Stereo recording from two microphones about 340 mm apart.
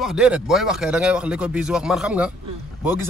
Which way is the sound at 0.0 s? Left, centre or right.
Centre.